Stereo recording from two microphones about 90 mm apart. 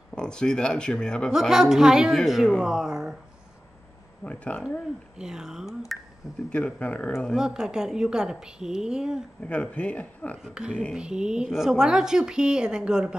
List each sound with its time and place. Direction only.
0.1 s speech: 10° left (ahead or behind)
1.3 s a woman's voice: 5° right (ahead or behind)
4.2 s speech: 15° left (ahead or behind)
4.6 s a woman's voice: 5° right (ahead or behind)
6.5 s speech: 15° left (ahead or behind)
7.3 s a woman's voice: 5° right (ahead or behind)
9.4 s speech: 15° left (ahead or behind)
10.4 s a woman's voice: 10° right (ahead or behind)